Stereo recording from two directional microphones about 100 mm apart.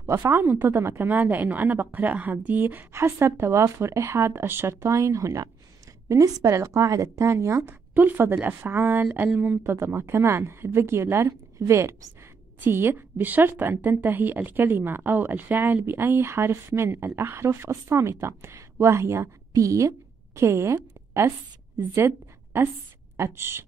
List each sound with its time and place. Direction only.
0.3 s a woman's voice: 25° right (ahead or behind)
21.9 s a sound: 25° right (ahead or behind)
23.1 s a woman's voice: 25° right (ahead or behind)